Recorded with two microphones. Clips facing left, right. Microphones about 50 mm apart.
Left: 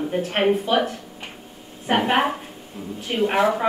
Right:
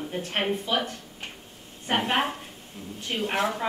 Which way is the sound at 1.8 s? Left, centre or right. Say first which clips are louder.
Left 6 dB; centre.